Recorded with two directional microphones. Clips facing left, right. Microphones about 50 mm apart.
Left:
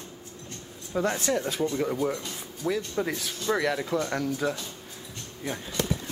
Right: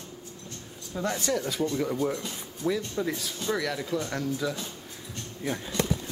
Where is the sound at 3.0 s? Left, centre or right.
Left.